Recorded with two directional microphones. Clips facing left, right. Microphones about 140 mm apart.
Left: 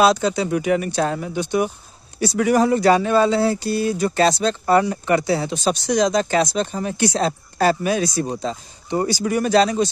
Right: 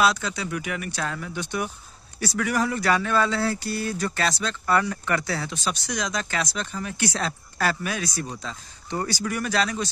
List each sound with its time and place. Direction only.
0.0 s speech: 25° left (ahead or behind)